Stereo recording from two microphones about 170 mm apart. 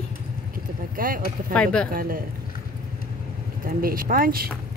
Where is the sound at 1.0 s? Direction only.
55° right (ahead or behind).